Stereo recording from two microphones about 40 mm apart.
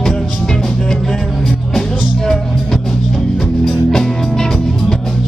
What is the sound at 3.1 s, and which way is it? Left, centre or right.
Music, centre.